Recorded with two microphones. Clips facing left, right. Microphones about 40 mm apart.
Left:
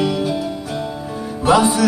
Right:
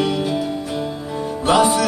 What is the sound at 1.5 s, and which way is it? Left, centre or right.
Music, right.